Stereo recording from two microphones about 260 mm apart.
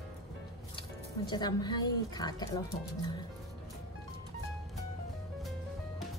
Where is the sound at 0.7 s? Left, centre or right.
Centre.